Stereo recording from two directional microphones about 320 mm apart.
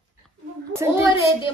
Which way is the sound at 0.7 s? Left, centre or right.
Centre.